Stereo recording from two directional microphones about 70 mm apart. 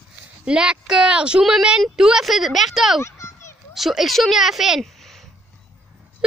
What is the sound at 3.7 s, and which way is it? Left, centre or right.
Speech, centre.